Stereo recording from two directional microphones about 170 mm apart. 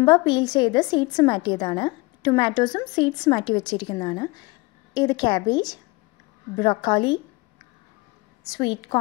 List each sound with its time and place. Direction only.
0.0 s a woman's voice: 25° left (ahead or behind)
8.5 s a woman's voice: 25° left (ahead or behind)